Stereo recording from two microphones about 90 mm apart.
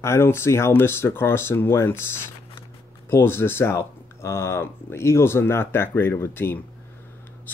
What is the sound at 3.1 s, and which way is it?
Speech, 25° left (ahead or behind).